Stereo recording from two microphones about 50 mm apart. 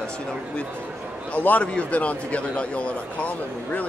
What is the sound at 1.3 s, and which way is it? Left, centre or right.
A man's voice, left.